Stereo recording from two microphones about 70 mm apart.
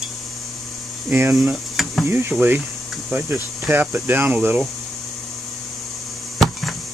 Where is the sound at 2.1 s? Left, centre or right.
Right.